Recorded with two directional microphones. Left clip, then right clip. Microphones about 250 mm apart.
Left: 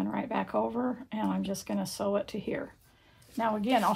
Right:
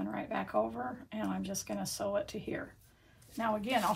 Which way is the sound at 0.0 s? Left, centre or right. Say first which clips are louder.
Left 5 dB; left.